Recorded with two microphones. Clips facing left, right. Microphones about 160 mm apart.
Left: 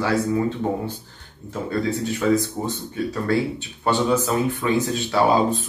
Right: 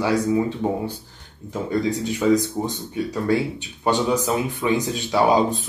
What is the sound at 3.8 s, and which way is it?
Speech, 15° right (ahead or behind).